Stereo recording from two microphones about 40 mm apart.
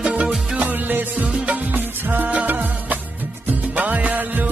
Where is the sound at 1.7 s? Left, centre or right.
Right.